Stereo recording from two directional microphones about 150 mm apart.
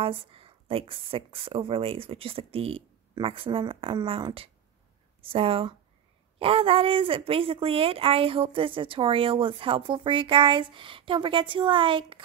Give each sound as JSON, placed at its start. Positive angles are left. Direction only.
{"t": 0.0, "sound": "speech", "side_deg": -40}